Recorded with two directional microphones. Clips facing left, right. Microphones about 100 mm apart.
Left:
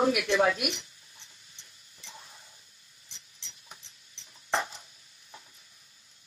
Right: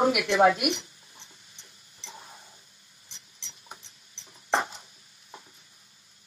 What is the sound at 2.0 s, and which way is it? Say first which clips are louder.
Tick-tock: right 4 dB; 30° right (ahead or behind).